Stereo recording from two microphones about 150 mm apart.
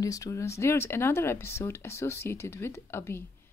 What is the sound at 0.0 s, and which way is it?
Speech, 25° left (ahead or behind).